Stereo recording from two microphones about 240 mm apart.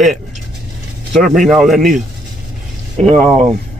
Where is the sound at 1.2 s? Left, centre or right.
Centre.